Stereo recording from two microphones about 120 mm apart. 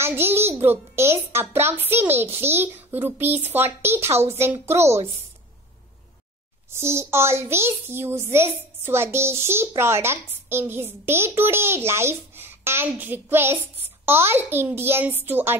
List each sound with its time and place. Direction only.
0.0 s music: 20° right (ahead or behind)
0.6 s a child's voice: 20° right (ahead or behind)
2.1 s a child's voice: 55° right (ahead or behind)
2.4 s a child's voice: 20° right (ahead or behind)
4.7 s a child's voice: 60° right (ahead or behind)
6.7 s a child's voice: 20° right (ahead or behind)